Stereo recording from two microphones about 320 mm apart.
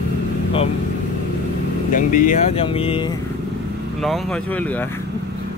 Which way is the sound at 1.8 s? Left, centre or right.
Left.